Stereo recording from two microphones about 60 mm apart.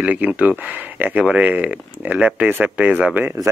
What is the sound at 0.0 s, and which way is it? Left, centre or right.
Speech, right.